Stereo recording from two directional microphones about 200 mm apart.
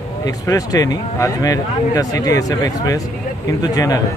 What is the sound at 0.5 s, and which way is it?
Speech, 15° left (ahead or behind).